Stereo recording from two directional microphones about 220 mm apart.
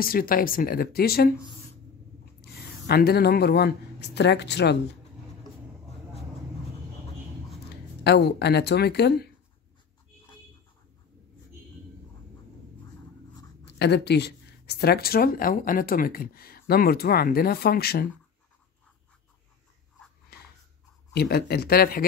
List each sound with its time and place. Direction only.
0.0 s speech: 40° left (ahead or behind)
2.9 s speech: 45° left (ahead or behind)
7.7 s speech: 50° left (ahead or behind)
13.7 s speech: 50° left (ahead or behind)
20.3 s a sound: 45° left (ahead or behind)
21.1 s speech: 45° left (ahead or behind)